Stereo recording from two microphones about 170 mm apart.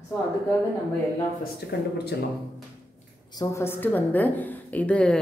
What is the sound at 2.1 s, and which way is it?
Speech, 75° left (ahead or behind).